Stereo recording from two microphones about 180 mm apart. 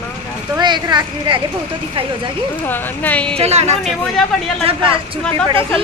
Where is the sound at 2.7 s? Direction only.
10° left (ahead or behind).